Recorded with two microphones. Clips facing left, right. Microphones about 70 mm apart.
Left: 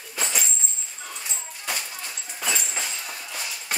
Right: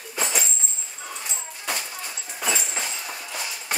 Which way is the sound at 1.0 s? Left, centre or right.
Centre.